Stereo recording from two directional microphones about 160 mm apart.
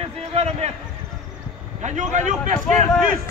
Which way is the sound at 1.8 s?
50° right (ahead or behind).